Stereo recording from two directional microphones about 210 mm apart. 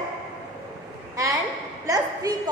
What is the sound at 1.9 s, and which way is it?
Speech, 15° right (ahead or behind).